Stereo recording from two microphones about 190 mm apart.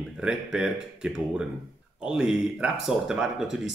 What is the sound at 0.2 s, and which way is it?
Speech, 5° right (ahead or behind).